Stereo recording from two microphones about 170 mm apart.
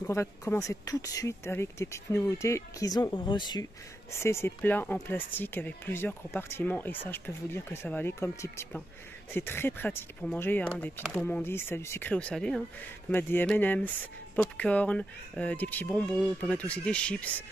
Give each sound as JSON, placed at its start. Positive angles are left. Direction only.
{"t": 0.0, "sound": "speech", "side_deg": 15}